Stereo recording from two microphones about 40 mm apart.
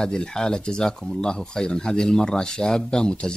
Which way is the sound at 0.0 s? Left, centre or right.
Centre.